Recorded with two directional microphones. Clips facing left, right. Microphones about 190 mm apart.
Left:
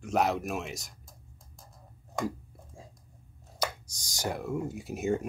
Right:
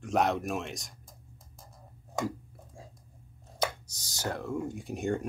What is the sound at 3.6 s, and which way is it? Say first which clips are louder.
Speech: right 2 dB; 15° left (ahead or behind).